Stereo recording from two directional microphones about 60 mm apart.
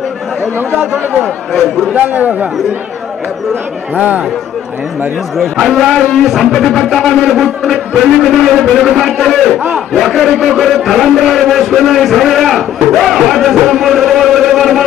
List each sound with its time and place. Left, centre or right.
0.6 s speech: right
1.2 s a man's voice: centre
2.0 s a man's voice: right
3.9 s a man's voice: right
5.4 s a man's voice: centre